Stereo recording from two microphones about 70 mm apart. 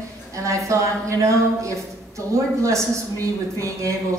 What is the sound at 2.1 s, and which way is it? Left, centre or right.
Speech, right.